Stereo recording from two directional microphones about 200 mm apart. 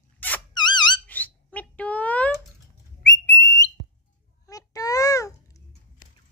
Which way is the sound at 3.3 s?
60° left (ahead or behind).